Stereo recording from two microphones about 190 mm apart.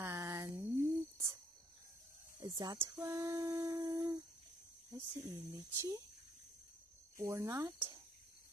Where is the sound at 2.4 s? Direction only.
20° right (ahead or behind).